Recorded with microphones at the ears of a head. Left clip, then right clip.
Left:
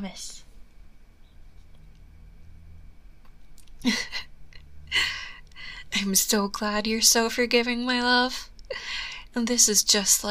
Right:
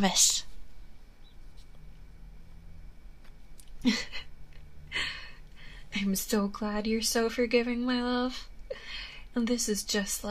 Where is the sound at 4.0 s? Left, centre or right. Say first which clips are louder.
Left 6 dB; left.